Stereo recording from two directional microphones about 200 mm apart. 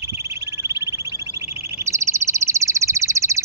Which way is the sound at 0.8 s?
15° right (ahead or behind).